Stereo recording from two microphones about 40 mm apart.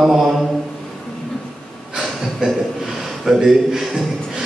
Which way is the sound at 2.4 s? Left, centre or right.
Centre.